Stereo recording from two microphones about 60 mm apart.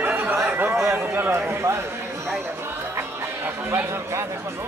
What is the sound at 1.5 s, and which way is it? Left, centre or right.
Speech, right.